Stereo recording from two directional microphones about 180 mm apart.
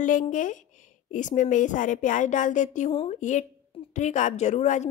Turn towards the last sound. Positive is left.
turn(degrees=40)  # may be behind; listen again after turning